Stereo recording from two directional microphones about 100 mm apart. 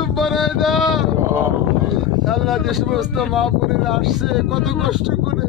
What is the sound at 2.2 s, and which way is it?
Speech, centre (ahead or behind).